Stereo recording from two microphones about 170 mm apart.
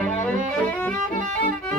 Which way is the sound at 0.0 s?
10° left (ahead or behind).